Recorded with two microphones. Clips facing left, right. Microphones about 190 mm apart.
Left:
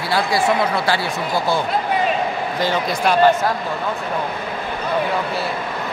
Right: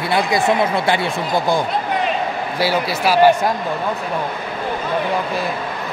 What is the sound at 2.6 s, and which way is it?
Speech, 5° right (ahead or behind).